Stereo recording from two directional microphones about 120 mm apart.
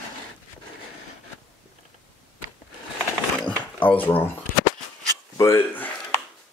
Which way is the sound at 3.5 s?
15° left (ahead or behind).